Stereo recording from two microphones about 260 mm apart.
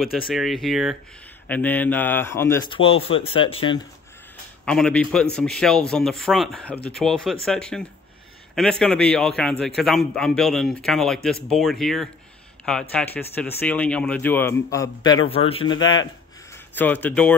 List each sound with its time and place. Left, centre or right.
0.3 s a man's voice: centre
4.6 s a man's voice: centre